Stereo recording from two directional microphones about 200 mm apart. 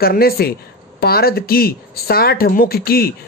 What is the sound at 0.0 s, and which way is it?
Speech, 50° left (ahead or behind).